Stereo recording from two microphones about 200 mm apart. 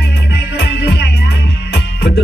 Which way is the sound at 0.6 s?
60° left (ahead or behind).